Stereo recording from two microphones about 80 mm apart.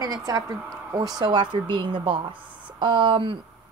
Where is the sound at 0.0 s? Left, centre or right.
Right.